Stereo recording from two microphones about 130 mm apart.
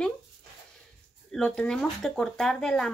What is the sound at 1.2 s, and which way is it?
Speech, 5° left (ahead or behind).